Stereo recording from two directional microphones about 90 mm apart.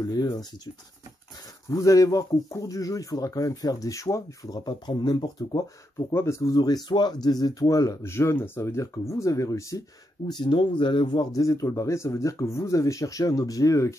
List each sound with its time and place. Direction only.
0.0 s speech: 45° left (ahead or behind)
1.7 s speech: 40° left (ahead or behind)
5.9 s speech: 30° left (ahead or behind)
6.5 s speech: 45° left (ahead or behind)
11.4 s speech: 35° left (ahead or behind)